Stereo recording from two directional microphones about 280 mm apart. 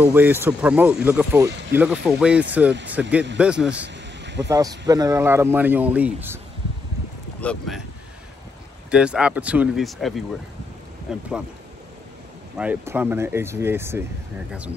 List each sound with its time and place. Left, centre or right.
0.0 s speech: centre
4.2 s a sound: right
4.5 s speech: centre
7.3 s speech: centre
8.9 s speech: centre
12.5 s speech: centre